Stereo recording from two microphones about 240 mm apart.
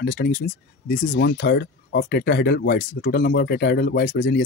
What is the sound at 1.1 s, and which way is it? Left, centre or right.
Speech, left.